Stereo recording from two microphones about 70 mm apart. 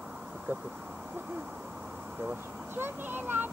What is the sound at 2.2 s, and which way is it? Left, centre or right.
Speech, right.